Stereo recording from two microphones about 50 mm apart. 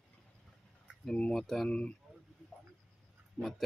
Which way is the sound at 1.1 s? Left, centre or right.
Left.